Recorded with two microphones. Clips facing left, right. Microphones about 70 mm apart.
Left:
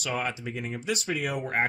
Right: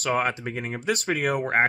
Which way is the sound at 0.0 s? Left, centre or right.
Right.